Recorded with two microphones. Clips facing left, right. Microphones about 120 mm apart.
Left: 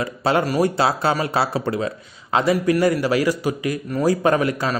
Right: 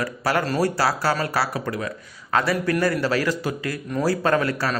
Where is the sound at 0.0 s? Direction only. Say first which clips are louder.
Left 3 dB; 25° left (ahead or behind).